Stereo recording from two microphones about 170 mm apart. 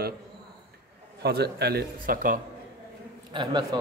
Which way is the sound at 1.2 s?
70° right (ahead or behind).